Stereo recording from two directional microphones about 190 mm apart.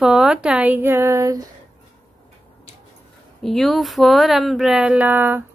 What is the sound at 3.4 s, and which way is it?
Speech, centre (ahead or behind).